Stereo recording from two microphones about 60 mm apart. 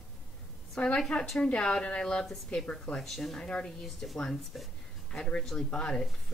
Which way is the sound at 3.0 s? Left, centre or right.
Centre.